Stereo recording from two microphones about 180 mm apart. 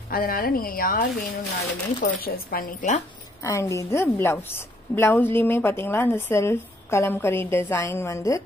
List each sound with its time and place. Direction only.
0.1 s a woman's voice: 55° left (ahead or behind)
3.4 s a woman's voice: 15° left (ahead or behind)